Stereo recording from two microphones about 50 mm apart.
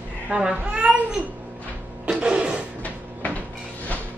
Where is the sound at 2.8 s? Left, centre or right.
Left.